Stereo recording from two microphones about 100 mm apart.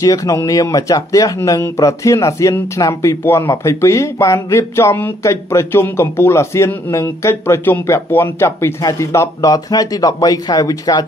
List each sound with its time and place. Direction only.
0.0 s speech: 35° left (ahead or behind)